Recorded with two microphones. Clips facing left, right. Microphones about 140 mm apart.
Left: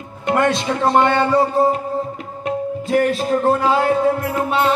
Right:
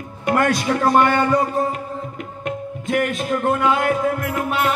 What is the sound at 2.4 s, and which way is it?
Music, 35° left (ahead or behind).